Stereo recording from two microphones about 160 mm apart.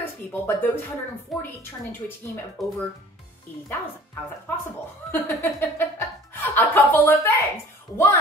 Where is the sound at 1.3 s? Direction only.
Centre (ahead or behind).